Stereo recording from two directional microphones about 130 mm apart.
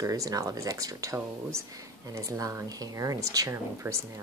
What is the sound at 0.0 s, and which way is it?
Speech, 25° right (ahead or behind).